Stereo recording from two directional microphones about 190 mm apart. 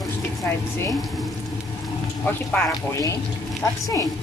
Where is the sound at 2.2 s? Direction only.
10° left (ahead or behind).